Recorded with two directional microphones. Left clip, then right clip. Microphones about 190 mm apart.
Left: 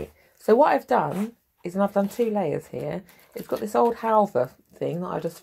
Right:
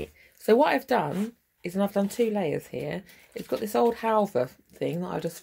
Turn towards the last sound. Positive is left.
turn(degrees=-15)  # may be behind; listen again after turning